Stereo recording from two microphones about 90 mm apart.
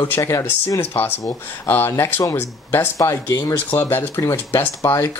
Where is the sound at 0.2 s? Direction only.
35° left (ahead or behind).